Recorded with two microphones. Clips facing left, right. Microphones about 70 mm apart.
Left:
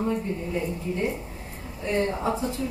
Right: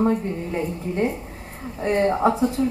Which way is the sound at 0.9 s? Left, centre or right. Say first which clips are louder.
Right 4 dB; right.